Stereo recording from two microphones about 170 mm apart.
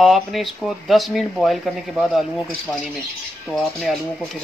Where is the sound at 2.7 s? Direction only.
Centre (ahead or behind).